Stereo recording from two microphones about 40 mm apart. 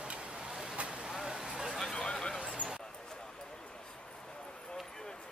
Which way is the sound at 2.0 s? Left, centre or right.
Left.